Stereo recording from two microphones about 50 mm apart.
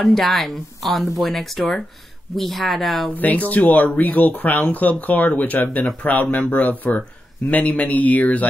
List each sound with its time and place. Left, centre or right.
0.0 s speech: centre
3.2 s speech: left